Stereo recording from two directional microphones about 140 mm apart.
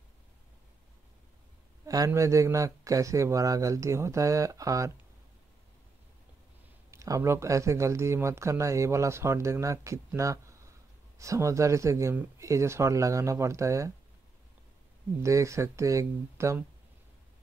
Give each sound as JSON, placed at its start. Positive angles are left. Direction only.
{"t": 1.9, "sound": "speech", "side_deg": -25}
{"t": 6.9, "sound": "speech", "side_deg": -20}
{"t": 15.2, "sound": "speech", "side_deg": -20}